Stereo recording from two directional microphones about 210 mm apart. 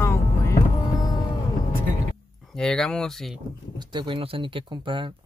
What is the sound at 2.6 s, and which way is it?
Speech, 5° left (ahead or behind).